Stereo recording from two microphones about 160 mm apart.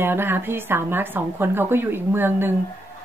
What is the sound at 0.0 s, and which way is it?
Speech, 15° right (ahead or behind).